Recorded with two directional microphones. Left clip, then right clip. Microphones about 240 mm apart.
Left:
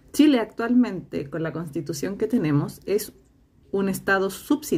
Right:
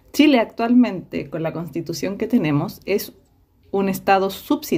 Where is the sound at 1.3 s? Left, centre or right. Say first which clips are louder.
Right 5 dB; right.